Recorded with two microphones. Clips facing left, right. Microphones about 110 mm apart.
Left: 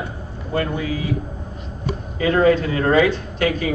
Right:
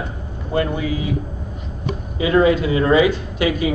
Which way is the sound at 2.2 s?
45° left (ahead or behind).